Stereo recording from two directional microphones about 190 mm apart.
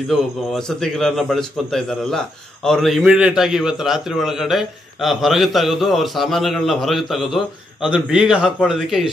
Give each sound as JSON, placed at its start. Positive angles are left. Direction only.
{"t": 0.1, "sound": "a man's voice", "side_deg": 0}